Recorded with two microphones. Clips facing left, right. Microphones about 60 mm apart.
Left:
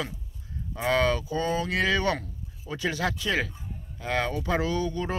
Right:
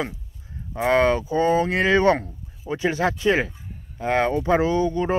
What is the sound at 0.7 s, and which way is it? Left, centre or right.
A man's voice, right.